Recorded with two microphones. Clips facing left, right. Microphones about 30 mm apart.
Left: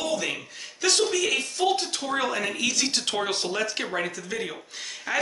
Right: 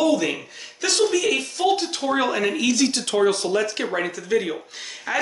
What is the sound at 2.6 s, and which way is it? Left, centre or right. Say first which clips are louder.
Speech: right 5 dB; centre.